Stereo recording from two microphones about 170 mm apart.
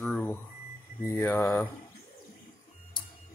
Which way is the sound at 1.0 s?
15° left (ahead or behind).